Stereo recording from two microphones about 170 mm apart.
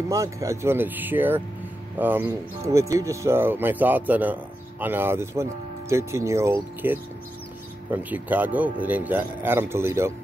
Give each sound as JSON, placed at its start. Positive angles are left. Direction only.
{"t": 0.1, "sound": "speech", "side_deg": -20}